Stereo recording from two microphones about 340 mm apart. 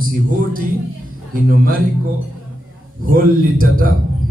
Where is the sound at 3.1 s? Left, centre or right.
Right.